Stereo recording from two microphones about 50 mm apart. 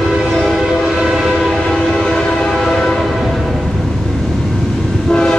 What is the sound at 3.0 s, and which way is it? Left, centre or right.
Train, centre.